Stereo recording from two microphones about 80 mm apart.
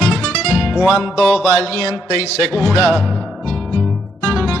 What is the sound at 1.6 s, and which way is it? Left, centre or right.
Music, right.